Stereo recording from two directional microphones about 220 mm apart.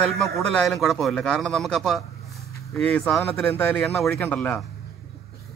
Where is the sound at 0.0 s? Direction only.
Centre (ahead or behind).